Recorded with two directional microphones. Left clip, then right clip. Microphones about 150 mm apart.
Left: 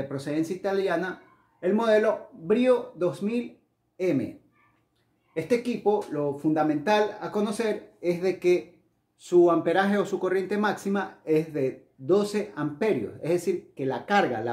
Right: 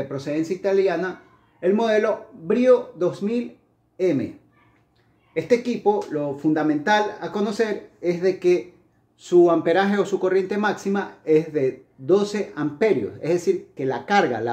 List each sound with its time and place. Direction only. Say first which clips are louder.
0.1 s a man's voice: right 4 dB; 10° right (ahead or behind)
3.9 s a sound: right 5 dB; 20° right (ahead or behind)
5.3 s speech: right 5 dB; 15° right (ahead or behind)